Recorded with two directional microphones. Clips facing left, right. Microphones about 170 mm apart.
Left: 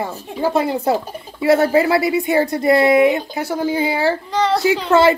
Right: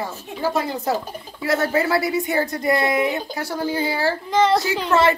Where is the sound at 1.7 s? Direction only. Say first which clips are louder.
Left 5 dB; 20° left (ahead or behind).